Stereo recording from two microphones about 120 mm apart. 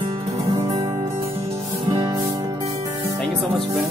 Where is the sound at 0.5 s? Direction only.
40° right (ahead or behind).